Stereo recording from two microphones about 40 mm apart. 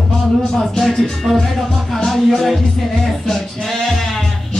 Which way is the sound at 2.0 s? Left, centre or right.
Centre.